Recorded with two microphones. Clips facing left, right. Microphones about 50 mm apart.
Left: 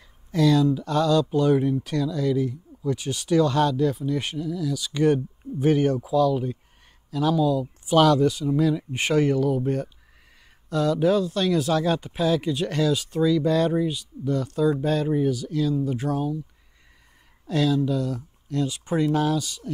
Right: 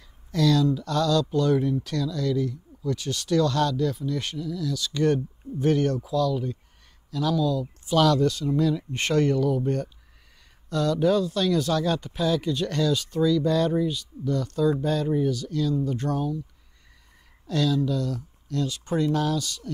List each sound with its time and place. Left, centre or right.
0.3 s speech: centre
17.5 s speech: centre